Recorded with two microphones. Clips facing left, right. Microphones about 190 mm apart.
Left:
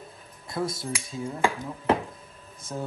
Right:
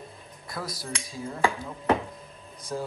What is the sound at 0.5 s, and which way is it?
Speech, 25° left (ahead or behind).